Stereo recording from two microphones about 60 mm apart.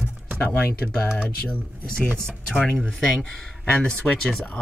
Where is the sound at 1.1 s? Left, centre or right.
Centre.